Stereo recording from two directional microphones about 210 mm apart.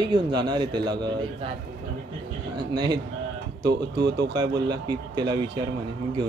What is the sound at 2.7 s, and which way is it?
Speech, 20° right (ahead or behind).